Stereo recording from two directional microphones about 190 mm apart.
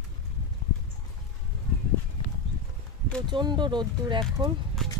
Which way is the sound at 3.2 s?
25° right (ahead or behind).